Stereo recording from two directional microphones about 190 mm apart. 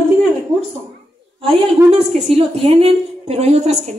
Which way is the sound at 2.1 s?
30° right (ahead or behind).